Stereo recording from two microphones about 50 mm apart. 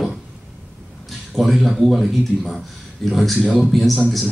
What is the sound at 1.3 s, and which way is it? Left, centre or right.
A man's voice, centre.